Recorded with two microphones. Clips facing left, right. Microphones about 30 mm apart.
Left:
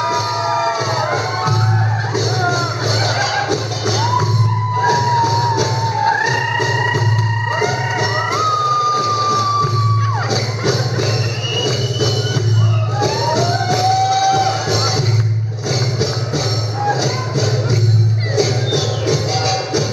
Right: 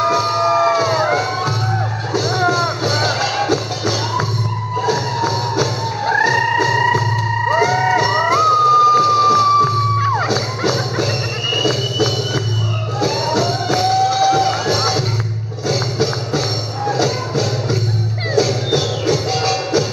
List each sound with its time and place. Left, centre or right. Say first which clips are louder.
0.4 s music: right 3 dB; centre
0.7 s crowd: right 3 dB; centre
2.1 s music: right 3 dB; centre
11.5 s a sound: right 2 dB; centre
13.0 s music: even; centre
16.9 s music: right 5 dB; centre